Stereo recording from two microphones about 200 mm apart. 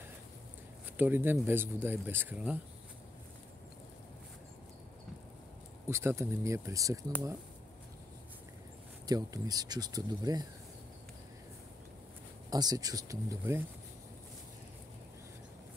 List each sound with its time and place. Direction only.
0.9 s speech: 10° right (ahead or behind)
5.9 s speech: 15° right (ahead or behind)
9.0 s speech: 20° right (ahead or behind)
12.4 s speech: 20° right (ahead or behind)